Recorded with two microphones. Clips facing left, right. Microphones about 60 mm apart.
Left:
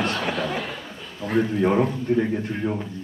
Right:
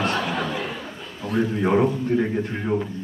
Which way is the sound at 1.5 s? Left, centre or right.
Centre.